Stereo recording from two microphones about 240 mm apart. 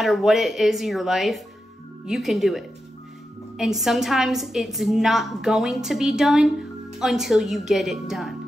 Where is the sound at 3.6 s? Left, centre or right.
Centre.